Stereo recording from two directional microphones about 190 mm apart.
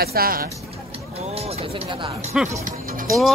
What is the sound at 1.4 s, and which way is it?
Speech, 30° right (ahead or behind).